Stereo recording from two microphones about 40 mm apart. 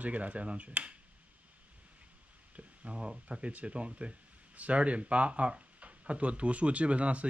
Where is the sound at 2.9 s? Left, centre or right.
Right.